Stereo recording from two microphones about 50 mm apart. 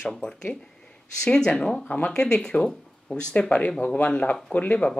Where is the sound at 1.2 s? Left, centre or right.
Centre.